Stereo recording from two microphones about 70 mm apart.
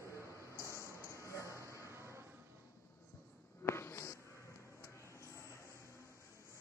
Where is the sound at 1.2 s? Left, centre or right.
Left.